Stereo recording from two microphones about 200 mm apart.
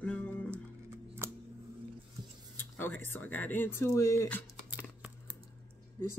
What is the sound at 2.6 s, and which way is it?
Speech, 10° left (ahead or behind).